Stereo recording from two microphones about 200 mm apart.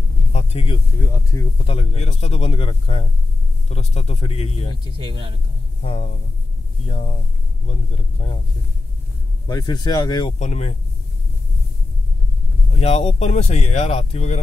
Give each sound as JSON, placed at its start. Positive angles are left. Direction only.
{"t": 0.3, "sound": "a sound", "side_deg": 30}
{"t": 1.0, "sound": "speech", "side_deg": 15}
{"t": 1.7, "sound": "speech", "side_deg": 30}
{"t": 4.8, "sound": "speech", "side_deg": -25}
{"t": 5.8, "sound": "speech", "side_deg": 35}
{"t": 9.5, "sound": "speech", "side_deg": 20}
{"t": 10.4, "sound": "speech", "side_deg": 35}
{"t": 12.8, "sound": "speech", "side_deg": 30}